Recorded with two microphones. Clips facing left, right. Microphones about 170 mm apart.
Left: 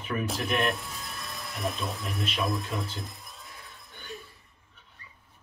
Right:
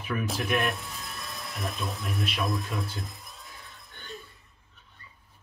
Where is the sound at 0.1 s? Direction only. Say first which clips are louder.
Right 1 dB; centre (ahead or behind).